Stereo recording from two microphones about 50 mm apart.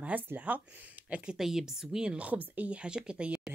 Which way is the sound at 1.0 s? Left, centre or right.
Right.